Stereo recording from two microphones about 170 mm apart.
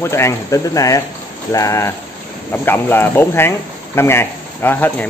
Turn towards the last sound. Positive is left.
turn(degrees=10)  # may be behind; listen again after turning